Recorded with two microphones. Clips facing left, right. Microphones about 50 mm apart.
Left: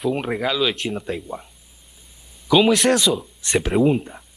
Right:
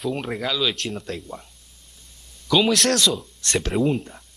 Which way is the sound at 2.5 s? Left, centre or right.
Centre.